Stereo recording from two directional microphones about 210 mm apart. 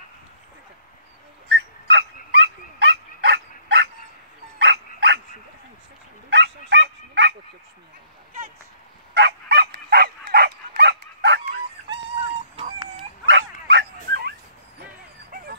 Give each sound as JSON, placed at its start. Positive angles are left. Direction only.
{"t": 1.5, "sound": "dog", "side_deg": -55}
{"t": 6.3, "sound": "bow-wow", "side_deg": -60}
{"t": 9.1, "sound": "dog", "side_deg": -55}
{"t": 13.3, "sound": "dog", "side_deg": -60}